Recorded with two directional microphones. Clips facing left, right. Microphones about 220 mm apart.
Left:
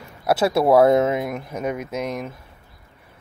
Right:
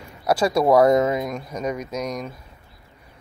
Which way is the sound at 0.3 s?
5° left (ahead or behind).